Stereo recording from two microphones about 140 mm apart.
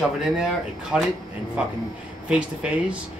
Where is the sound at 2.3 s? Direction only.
10° right (ahead or behind).